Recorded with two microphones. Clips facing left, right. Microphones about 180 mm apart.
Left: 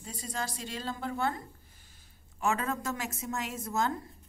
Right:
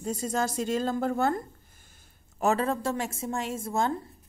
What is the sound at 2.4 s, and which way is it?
A woman's voice, 35° right (ahead or behind).